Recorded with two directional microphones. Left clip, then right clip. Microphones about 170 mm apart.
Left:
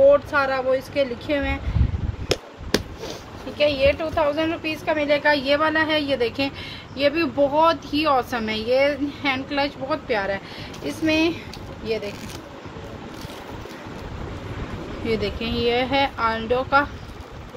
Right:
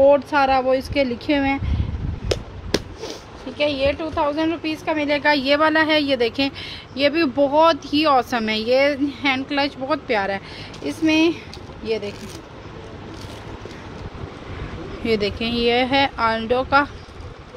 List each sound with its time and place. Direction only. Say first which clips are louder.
0.1 s speech: right 2 dB; 50° right (ahead or behind)
3.0 s speech: right 1 dB; 40° right (ahead or behind)
15.0 s speech: right 4 dB; 50° right (ahead or behind)